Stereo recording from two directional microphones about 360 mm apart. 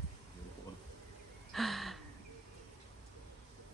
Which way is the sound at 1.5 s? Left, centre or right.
Centre.